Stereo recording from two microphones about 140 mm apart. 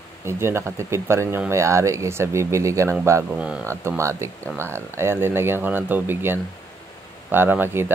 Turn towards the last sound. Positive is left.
turn(degrees=-15)  # may be behind; listen again after turning